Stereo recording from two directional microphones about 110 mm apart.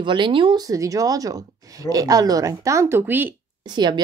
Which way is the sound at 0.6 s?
30° right (ahead or behind).